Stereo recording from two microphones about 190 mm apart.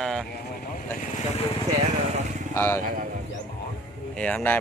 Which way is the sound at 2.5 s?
15° left (ahead or behind).